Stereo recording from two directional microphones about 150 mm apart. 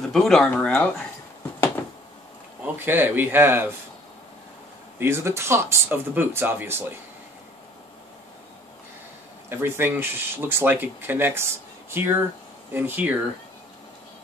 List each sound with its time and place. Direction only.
0.1 s speech: 5° left (ahead or behind)
2.6 s speech: 15° right (ahead or behind)
4.9 s speech: 15° right (ahead or behind)
9.5 s speech: 15° right (ahead or behind)